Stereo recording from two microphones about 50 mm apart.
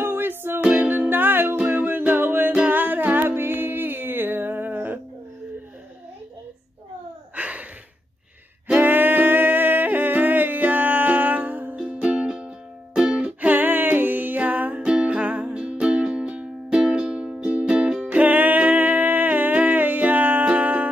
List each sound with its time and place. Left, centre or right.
0.0 s music: right
7.3 s a sound: right
8.7 s yodeling: right
11.7 s music: right